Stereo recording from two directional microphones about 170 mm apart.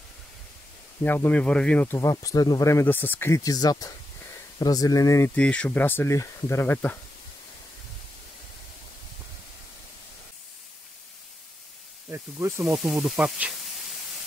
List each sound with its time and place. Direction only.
1.0 s speech: 10° left (ahead or behind)
12.1 s speech: 15° right (ahead or behind)
12.7 s speech: centre (ahead or behind)